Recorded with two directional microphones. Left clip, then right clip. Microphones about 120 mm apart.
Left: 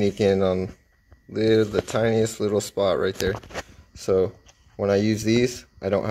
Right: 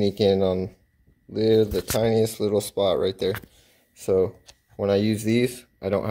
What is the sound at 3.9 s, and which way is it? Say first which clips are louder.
Speech: even; 10° right (ahead or behind).